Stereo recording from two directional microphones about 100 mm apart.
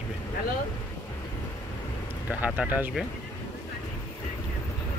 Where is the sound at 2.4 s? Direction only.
15° right (ahead or behind).